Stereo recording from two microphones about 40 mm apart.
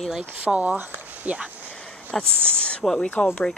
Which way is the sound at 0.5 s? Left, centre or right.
Right.